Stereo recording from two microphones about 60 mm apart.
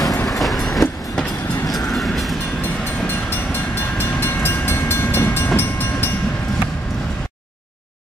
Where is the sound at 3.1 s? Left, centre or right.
Left.